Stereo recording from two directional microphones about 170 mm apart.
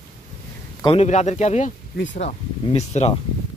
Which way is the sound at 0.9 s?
40° left (ahead or behind).